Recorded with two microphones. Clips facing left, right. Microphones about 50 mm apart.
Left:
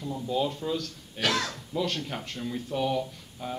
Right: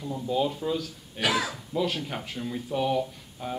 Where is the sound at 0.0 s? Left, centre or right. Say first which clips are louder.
Right 2 dB; centre.